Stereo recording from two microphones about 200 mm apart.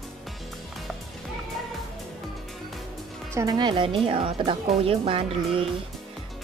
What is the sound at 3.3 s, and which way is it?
Speech, 20° right (ahead or behind).